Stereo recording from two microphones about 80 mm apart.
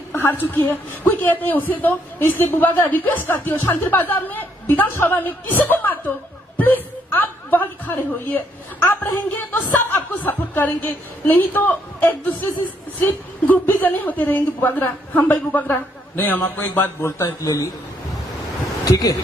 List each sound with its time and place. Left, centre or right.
0.1 s a woman's voice: left
18.9 s speech: left